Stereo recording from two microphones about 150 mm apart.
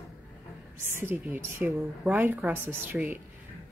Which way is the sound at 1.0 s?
15° right (ahead or behind).